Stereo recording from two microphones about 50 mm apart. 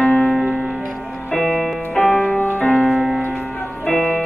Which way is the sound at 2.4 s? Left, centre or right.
Left.